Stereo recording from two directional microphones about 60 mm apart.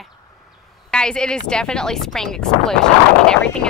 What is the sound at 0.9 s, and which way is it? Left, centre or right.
Speech, centre.